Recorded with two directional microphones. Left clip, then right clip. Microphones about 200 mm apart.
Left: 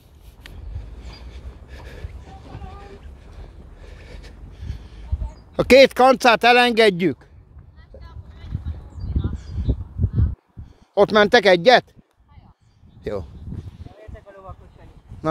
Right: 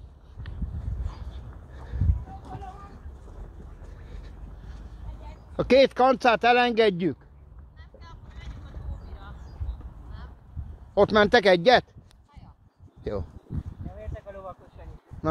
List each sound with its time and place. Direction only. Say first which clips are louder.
5.6 s speech: left 7 dB; 35° left (ahead or behind)
8.0 s vehicle: left 1 dB; 40° right (ahead or behind)
11.0 s speech: left 5 dB; 40° left (ahead or behind)
13.0 s speech: left 4 dB; 45° left (ahead or behind)
14.1 s a sound: right 2 dB; 15° right (ahead or behind)